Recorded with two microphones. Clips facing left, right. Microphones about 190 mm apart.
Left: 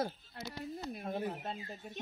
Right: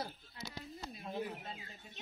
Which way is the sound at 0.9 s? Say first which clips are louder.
Left 2 dB; 50° left (ahead or behind).